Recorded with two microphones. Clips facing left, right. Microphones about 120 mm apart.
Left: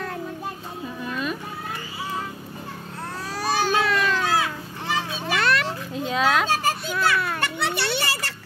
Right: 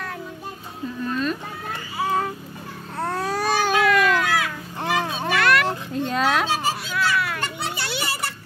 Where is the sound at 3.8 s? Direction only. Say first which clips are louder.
Right 4 dB; 30° left (ahead or behind).